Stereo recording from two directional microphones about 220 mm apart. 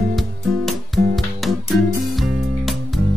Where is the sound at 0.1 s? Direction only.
Centre (ahead or behind).